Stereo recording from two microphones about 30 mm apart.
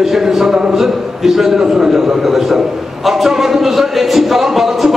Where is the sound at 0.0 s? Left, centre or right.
Centre.